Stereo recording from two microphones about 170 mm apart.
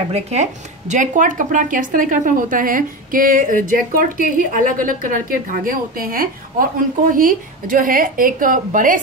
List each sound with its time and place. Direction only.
0.1 s speech: 40° right (ahead or behind)